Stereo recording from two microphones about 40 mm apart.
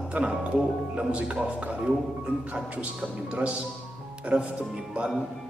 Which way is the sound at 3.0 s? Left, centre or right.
Right.